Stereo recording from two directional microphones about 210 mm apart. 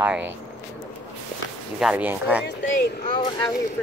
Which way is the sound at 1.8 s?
5° right (ahead or behind).